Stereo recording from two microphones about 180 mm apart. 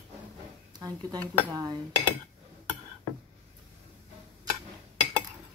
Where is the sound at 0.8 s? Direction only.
20° right (ahead or behind).